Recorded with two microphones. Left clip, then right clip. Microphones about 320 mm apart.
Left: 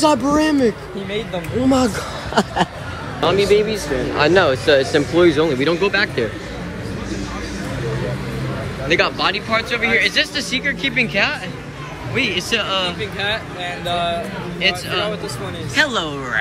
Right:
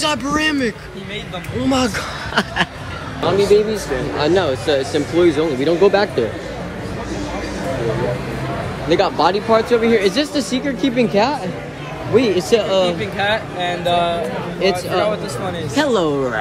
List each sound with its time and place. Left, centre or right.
0.0 s speech: centre
3.2 s speech: centre
8.8 s speech: centre
13.0 s speech: right
14.6 s speech: centre